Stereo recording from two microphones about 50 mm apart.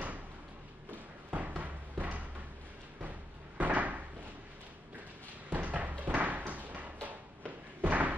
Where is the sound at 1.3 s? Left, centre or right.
Right.